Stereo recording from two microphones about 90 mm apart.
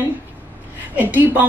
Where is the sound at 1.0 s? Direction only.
20° right (ahead or behind).